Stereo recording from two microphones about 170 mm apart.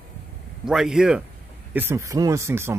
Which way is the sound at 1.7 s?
15° right (ahead or behind).